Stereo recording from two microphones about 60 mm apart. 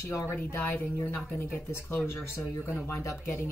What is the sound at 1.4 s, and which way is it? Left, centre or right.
Speech, left.